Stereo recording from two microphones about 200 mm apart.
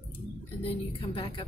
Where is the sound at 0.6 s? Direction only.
25° left (ahead or behind).